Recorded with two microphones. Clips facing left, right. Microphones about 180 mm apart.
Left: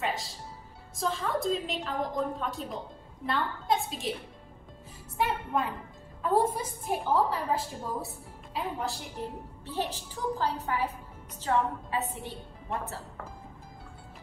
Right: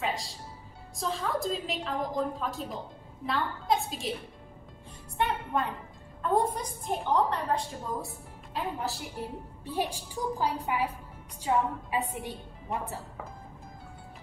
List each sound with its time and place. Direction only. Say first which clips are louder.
0.0 s a woman's voice: even; centre (ahead or behind)
5.1 s a woman's voice: even; centre (ahead or behind)
9.7 s a woman's voice: right 2 dB; 10° right (ahead or behind)